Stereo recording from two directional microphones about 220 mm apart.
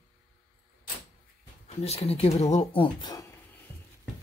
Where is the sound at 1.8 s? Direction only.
30° left (ahead or behind).